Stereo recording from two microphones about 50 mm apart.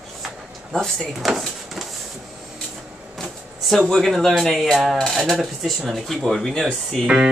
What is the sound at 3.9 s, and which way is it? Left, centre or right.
Speech, centre.